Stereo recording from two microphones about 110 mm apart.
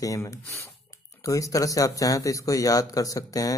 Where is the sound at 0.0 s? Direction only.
30° left (ahead or behind).